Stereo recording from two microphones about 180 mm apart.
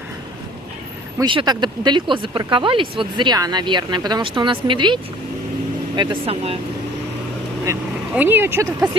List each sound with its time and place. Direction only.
1.1 s speech: 25° right (ahead or behind)
8.1 s speech: 10° right (ahead or behind)